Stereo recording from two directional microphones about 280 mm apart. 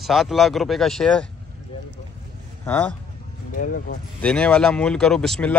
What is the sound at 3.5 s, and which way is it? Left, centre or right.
Speech, left.